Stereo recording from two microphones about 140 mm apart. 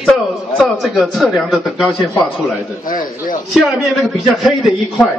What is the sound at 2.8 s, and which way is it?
Speech, 80° left.